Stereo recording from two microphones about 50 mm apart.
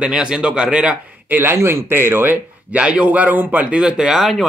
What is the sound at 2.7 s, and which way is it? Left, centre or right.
Speech, right.